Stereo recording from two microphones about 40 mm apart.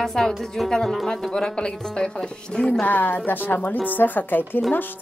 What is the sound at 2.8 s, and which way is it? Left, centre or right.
Speech, left.